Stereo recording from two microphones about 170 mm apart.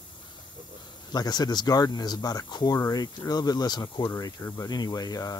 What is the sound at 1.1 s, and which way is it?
Speech, 25° left (ahead or behind).